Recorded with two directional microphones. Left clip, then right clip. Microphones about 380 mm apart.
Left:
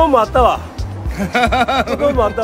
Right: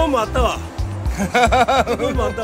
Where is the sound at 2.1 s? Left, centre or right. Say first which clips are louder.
Left 6 dB; centre.